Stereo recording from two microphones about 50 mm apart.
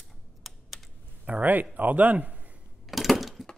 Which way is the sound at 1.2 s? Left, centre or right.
Right.